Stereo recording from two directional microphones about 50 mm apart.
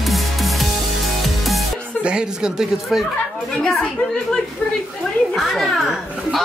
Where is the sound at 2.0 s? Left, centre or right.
Centre.